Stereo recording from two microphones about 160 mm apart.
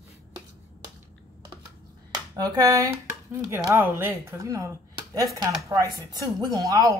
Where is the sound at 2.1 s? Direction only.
25° right (ahead or behind).